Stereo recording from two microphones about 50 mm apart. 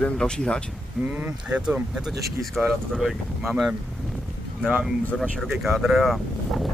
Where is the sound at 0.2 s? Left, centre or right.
Centre.